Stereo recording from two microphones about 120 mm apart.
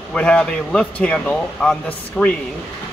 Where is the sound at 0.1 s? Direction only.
10° left (ahead or behind).